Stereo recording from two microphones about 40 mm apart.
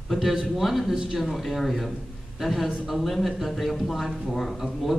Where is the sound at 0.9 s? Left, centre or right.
Centre.